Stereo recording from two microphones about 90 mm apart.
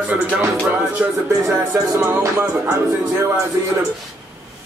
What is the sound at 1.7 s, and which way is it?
Speech, 35° right (ahead or behind).